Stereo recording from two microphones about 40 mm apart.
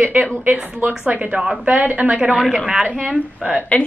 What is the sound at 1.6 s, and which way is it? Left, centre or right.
Speech, right.